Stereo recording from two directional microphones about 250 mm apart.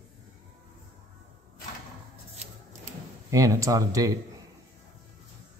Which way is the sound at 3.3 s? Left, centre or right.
Centre.